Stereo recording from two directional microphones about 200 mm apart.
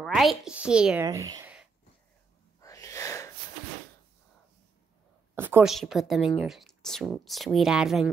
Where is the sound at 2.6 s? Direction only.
15° left (ahead or behind).